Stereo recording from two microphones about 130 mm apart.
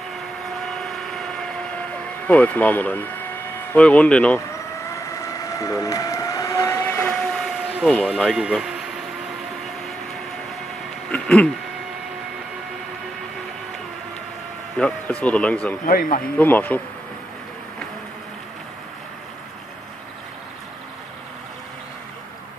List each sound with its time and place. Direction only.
0.7 s vehicle: 5° left (ahead or behind)
3.7 s speech: 10° left (ahead or behind)
4.9 s vehicle: 25° left (ahead or behind); by 8.7 s 5° right (ahead or behind)
11.1 s a sound: 10° left (ahead or behind)
14.8 s speech: 10° left (ahead or behind)